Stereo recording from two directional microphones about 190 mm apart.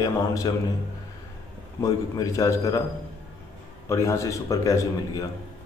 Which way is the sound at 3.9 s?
15° left (ahead or behind).